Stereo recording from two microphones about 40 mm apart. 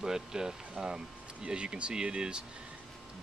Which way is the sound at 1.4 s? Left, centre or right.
Right.